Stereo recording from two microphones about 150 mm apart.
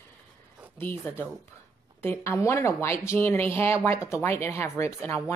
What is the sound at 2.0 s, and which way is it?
Speech, 15° left (ahead or behind).